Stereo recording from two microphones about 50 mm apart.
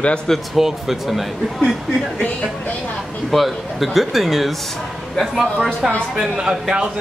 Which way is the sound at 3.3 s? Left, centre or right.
Centre.